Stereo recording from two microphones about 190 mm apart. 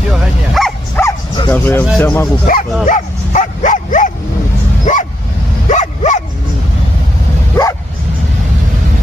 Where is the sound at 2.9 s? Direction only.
40° left (ahead or behind).